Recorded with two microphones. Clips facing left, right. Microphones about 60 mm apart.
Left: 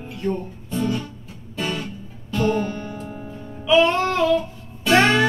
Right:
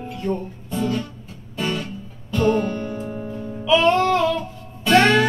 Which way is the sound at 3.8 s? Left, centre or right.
Centre.